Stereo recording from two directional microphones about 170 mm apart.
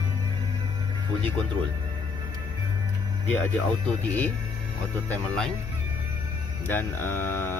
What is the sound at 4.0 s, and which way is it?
Speech, 10° left (ahead or behind).